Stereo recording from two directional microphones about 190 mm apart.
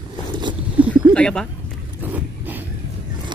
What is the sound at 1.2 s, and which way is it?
Speech, 5° left (ahead or behind).